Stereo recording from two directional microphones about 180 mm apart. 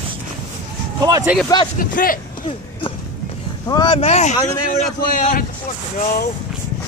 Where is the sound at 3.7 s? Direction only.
25° left (ahead or behind); by 5.4 s 50° left (ahead or behind).